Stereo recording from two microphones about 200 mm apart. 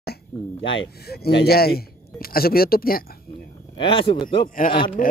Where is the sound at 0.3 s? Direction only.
10° left (ahead or behind).